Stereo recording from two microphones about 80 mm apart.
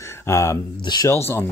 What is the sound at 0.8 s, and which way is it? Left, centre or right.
Speech, left.